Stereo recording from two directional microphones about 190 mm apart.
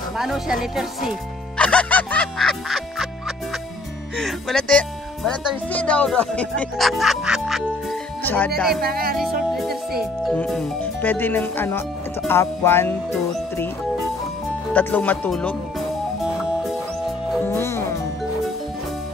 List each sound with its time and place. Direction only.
0.2 s speech: centre (ahead or behind)
1.6 s music: 5° left (ahead or behind)
4.2 s speech: centre (ahead or behind)
8.2 s speech: 10° left (ahead or behind)
8.8 s music: 50° right (ahead or behind)
10.3 s speech: 5° left (ahead or behind)
14.7 s speech: 10° left (ahead or behind)
17.5 s music: 15° left (ahead or behind)